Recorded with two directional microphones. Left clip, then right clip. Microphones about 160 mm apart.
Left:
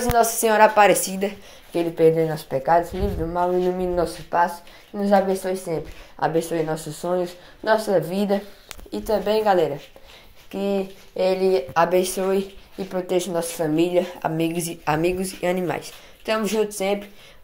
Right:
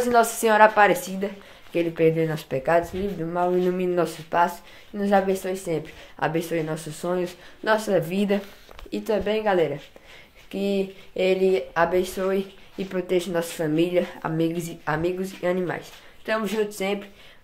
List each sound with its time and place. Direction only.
0.2 s speech: 5° right (ahead or behind)
0.7 s speech: 15° left (ahead or behind)
1.7 s speech: 5° right (ahead or behind)
2.5 s speech: 20° right (ahead or behind)
4.9 s speech: 10° right (ahead or behind)
7.9 s a woman's voice: 40° right (ahead or behind)
8.9 s speech: 25° right (ahead or behind)
9.2 s speech: 5° right (ahead or behind)
10.5 s speech: 25° right (ahead or behind)
11.7 s speech: 10° left (ahead or behind)
13.3 s speech: 10° right (ahead or behind)
13.7 s speech: centre (ahead or behind); by 16.5 s 15° left (ahead or behind)
16.6 s speech: centre (ahead or behind)